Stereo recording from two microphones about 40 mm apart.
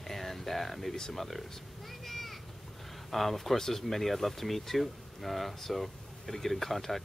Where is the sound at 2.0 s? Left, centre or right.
Centre.